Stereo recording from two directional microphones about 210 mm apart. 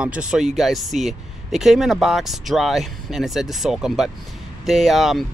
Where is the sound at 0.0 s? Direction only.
5° right (ahead or behind).